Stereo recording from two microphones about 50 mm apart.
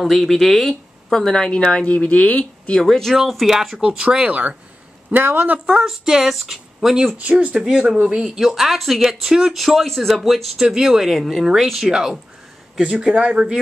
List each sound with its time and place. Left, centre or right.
0.0 s speech: centre; by 2.7 s left
2.8 s speech: centre
3.8 s speech: right
4.3 s speech: right
5.9 s speech: centre
7.1 s speech: right
8.4 s speech: centre
10.7 s speech: centre
11.9 s speech: centre